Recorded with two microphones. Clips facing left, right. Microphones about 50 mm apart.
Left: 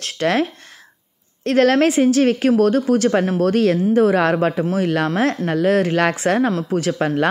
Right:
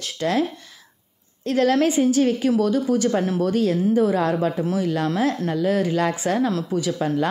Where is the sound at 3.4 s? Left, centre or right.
Left.